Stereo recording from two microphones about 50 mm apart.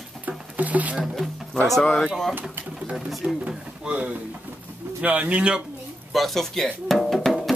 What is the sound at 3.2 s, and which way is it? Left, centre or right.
Speech, centre.